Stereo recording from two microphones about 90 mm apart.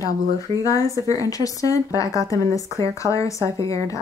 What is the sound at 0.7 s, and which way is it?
Speech, 40° left (ahead or behind).